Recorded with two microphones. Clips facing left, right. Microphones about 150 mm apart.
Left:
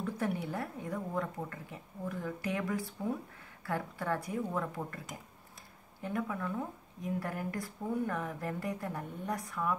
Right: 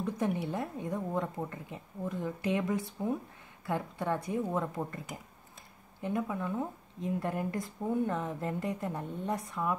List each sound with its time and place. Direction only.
0.0 s a woman's voice: 20° right (ahead or behind)